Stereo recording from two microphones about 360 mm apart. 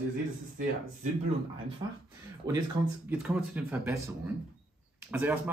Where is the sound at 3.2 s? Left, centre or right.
Centre.